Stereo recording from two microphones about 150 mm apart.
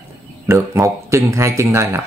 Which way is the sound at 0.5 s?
20° right (ahead or behind).